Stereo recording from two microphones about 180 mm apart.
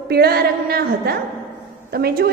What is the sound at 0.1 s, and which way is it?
A woman's voice, 60° right (ahead or behind).